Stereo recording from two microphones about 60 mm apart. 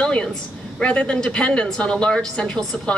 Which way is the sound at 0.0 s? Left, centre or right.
Centre.